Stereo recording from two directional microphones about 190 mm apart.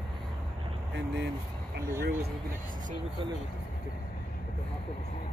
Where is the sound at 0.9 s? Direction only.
65° right (ahead or behind).